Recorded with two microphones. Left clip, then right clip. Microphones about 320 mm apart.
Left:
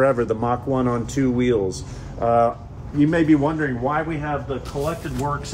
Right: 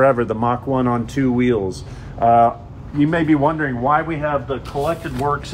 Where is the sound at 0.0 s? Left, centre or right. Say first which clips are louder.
Right 3 dB; centre.